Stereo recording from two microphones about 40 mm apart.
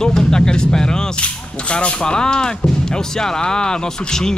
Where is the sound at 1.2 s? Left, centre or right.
Left.